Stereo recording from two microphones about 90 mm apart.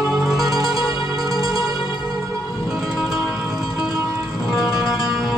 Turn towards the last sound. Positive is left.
turn(degrees=-5)  # may be behind; listen again after turning